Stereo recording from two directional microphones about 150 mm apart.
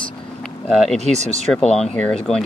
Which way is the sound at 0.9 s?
50° right (ahead or behind).